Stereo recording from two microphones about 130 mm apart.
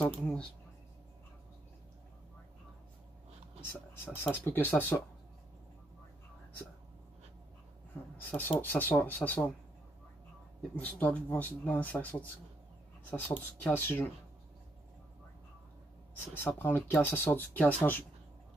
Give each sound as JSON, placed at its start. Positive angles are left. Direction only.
{"t": 0.0, "sound": "speech", "side_deg": 10}
{"t": 3.9, "sound": "speech", "side_deg": 15}
{"t": 8.3, "sound": "speech", "side_deg": 15}
{"t": 10.8, "sound": "speech", "side_deg": 10}
{"t": 16.3, "sound": "speech", "side_deg": 15}